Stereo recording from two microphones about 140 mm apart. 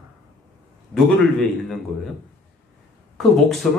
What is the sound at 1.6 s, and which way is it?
Speech, centre (ahead or behind).